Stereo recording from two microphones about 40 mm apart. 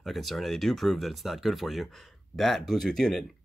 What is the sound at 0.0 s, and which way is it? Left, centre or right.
Speech, centre.